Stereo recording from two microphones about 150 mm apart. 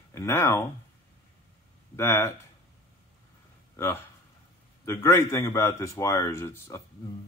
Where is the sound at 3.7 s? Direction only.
15° left (ahead or behind).